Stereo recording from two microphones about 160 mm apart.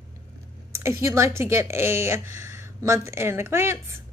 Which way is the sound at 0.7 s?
20° right (ahead or behind).